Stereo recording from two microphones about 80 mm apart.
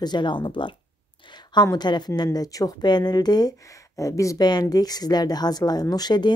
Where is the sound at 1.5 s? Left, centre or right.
Left.